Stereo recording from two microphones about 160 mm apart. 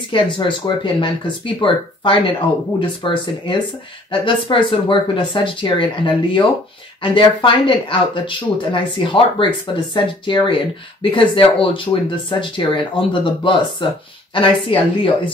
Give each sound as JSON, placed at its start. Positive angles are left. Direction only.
{"t": 0.1, "sound": "speech", "side_deg": 30}